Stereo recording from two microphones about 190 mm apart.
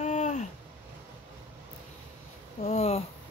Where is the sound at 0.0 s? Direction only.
40° left (ahead or behind).